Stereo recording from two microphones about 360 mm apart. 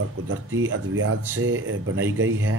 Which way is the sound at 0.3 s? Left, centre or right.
Right.